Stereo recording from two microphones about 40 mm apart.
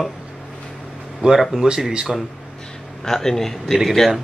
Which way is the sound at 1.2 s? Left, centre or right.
Centre.